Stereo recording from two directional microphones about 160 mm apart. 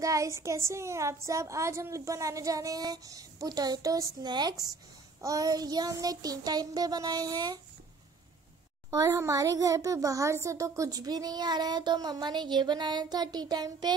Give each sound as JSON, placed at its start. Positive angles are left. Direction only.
{"t": 0.0, "sound": "a child's voice", "side_deg": -20}
{"t": 8.9, "sound": "a child's voice", "side_deg": -20}